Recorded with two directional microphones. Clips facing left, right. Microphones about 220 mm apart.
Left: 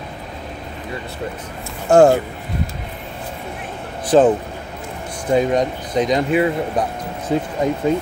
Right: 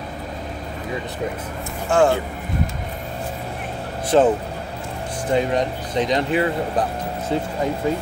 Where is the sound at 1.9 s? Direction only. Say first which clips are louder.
Left 6 dB; 40° left (ahead or behind).